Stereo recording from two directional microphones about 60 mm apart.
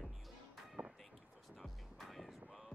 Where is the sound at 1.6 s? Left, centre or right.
Centre.